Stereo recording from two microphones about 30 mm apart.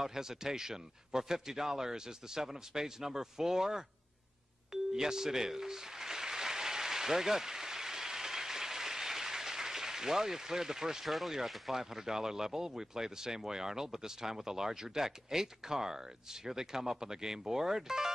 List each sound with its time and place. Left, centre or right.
0.0 s speech: centre
4.9 s applause: centre
11.1 s speech: centre
11.7 s speech: centre